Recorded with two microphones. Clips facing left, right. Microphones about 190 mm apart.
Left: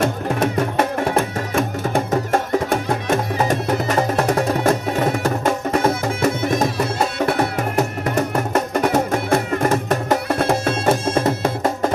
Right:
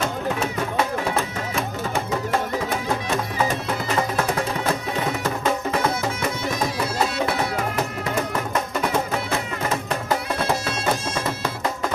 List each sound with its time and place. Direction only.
0.0 s music: 55° left (ahead or behind)